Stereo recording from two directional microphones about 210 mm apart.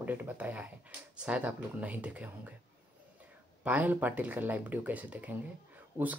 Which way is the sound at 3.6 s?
5° right (ahead or behind).